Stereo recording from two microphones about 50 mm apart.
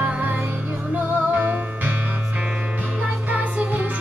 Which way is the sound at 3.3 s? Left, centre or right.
Right.